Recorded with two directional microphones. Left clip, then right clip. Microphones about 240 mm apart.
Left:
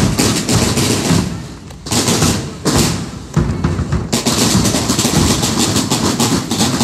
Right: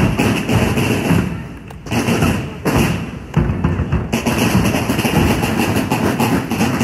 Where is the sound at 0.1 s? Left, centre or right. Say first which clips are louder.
Left 2 dB; left.